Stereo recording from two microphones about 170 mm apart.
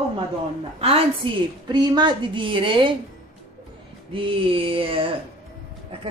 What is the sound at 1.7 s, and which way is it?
A woman's voice, 25° right (ahead or behind).